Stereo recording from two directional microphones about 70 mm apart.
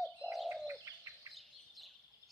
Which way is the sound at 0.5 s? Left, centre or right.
Right.